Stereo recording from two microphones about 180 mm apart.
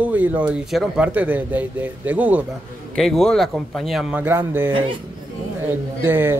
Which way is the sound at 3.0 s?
Centre (ahead or behind).